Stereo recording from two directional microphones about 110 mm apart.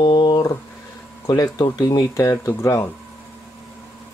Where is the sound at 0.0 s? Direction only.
40° left (ahead or behind).